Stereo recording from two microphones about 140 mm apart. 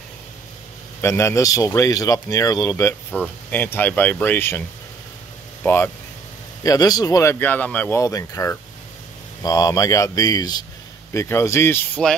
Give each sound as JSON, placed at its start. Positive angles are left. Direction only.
{"t": 1.0, "sound": "speech", "side_deg": 20}
{"t": 8.0, "sound": "speech", "side_deg": 25}